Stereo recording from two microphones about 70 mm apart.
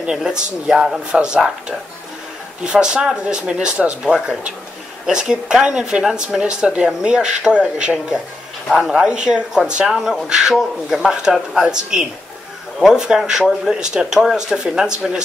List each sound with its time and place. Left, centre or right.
0.0 s speech: centre
2.6 s speech: centre